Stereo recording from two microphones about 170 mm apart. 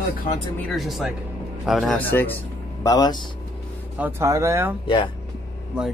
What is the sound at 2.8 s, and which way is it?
Speech, 20° left (ahead or behind).